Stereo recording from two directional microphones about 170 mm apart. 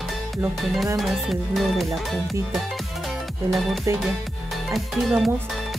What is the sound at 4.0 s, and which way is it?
Speech, centre (ahead or behind).